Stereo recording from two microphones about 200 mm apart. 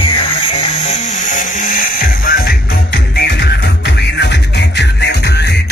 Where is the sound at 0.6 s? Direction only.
35° left (ahead or behind).